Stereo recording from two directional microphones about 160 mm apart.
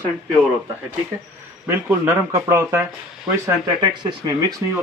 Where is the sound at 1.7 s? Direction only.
10° right (ahead or behind).